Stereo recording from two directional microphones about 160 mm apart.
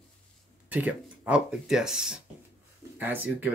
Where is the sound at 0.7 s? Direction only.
10° right (ahead or behind).